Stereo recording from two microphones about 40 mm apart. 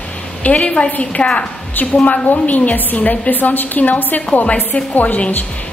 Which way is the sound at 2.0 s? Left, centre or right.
Left.